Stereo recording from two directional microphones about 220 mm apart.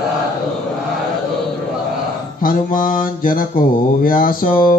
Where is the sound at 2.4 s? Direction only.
40° left (ahead or behind).